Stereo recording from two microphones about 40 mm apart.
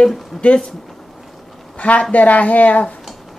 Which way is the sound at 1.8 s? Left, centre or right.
Left.